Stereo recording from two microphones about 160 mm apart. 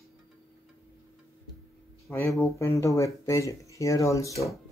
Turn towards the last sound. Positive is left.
turn(degrees=20)  # may be behind; listen again after turning